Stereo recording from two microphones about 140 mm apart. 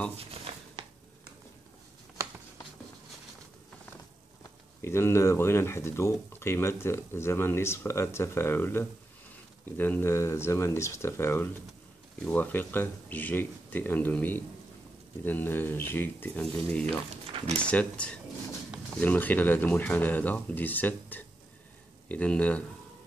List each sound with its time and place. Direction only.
0.3 s a sound: 45° right (ahead or behind)
4.8 s speech: 20° left (ahead or behind)
16.8 s speech: 50° right (ahead or behind)
17.6 s speech: 10° left (ahead or behind)